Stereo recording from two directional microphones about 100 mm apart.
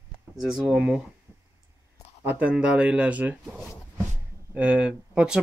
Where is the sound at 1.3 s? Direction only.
20° right (ahead or behind).